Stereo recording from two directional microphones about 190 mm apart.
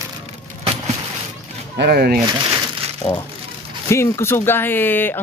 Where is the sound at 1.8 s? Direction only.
55° right (ahead or behind).